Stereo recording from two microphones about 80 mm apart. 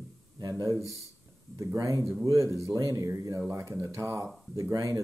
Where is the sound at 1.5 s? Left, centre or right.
Right.